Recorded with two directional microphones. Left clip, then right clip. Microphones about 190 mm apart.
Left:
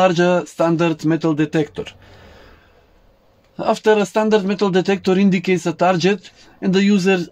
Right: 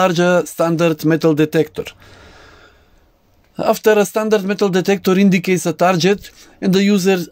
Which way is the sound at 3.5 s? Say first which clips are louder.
Right 2 dB; 55° right (ahead or behind).